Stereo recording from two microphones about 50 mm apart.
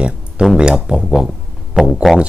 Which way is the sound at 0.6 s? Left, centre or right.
Centre.